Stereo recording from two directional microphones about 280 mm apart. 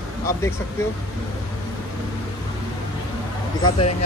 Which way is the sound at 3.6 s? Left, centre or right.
Centre.